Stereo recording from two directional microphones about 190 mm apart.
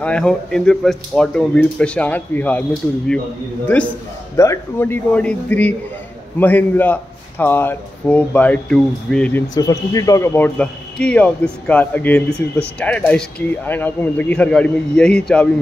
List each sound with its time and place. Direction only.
0.0 s speech: 5° left (ahead or behind)
3.6 s a man's voice: 5° left (ahead or behind)
9.5 s a man's voice: 20° left (ahead or behind)